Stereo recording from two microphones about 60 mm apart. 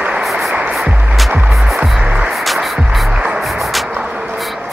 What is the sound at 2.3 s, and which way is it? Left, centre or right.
Music, centre.